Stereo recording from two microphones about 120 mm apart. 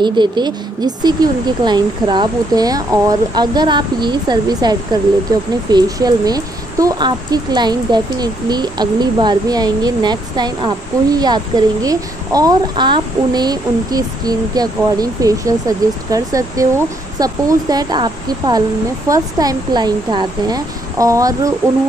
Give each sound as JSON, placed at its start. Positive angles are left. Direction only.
{"t": 0.0, "sound": "speech", "side_deg": -40}